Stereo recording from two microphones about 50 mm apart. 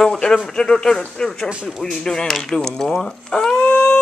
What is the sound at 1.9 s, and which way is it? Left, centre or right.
A man's voice, centre.